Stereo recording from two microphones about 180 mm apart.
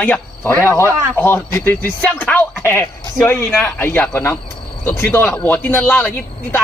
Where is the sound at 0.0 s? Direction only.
10° left (ahead or behind).